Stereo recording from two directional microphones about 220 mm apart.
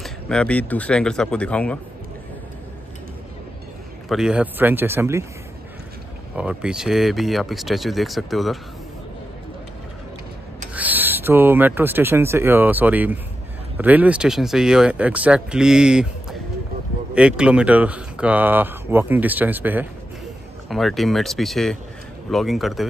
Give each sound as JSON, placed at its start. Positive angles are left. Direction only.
{"t": 0.0, "sound": "speech", "side_deg": 5}
{"t": 4.1, "sound": "speech", "side_deg": -5}
{"t": 6.3, "sound": "speech", "side_deg": -5}
{"t": 10.7, "sound": "speech", "side_deg": -5}